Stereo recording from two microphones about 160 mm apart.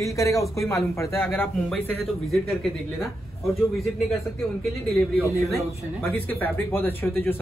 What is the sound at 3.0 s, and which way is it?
Speech, centre (ahead or behind).